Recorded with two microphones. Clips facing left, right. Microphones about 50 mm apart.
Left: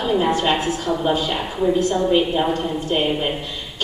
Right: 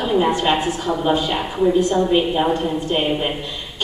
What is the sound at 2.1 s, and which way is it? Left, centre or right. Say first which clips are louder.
Speech: right 1 dB; centre.